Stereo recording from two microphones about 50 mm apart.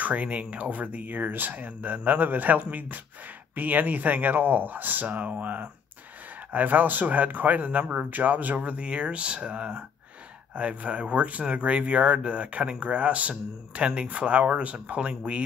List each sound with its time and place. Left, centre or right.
0.0 s speech: right